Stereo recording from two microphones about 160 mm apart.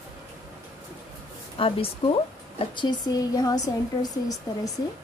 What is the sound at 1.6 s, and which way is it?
A woman's voice, 35° left (ahead or behind).